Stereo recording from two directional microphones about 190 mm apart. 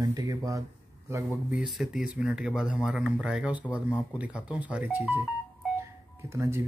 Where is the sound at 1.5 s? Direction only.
5° right (ahead or behind).